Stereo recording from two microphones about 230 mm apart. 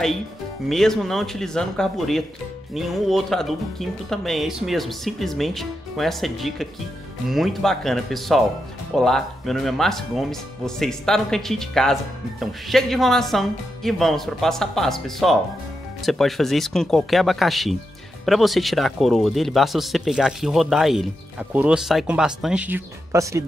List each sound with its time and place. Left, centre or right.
0.7 s speech: centre